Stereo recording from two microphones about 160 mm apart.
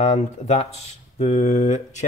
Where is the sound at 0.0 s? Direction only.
45° left (ahead or behind).